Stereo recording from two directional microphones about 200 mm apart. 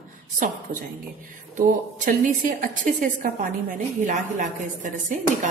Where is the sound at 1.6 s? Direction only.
40° right (ahead or behind).